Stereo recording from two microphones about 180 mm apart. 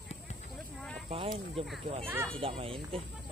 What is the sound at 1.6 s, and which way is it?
A child's voice, 30° right (ahead or behind).